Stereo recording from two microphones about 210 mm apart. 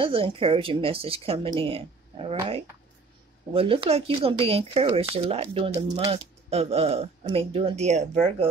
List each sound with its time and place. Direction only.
0.0 s speech: 25° right (ahead or behind)